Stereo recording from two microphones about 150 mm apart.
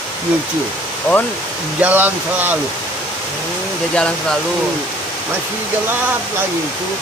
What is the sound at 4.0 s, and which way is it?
Speech, 5° left (ahead or behind).